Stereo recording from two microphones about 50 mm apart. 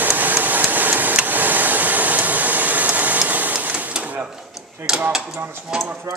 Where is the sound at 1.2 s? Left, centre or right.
Right.